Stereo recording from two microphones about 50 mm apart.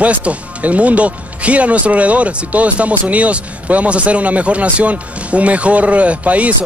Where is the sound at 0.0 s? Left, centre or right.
Right.